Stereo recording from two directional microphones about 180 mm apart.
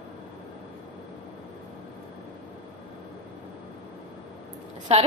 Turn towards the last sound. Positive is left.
turn(degrees=-35)  # may be behind; listen again after turning